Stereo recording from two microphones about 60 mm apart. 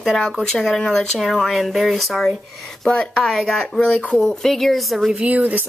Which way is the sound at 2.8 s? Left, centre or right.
Centre.